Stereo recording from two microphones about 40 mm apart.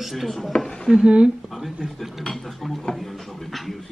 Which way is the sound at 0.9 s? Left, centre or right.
Right.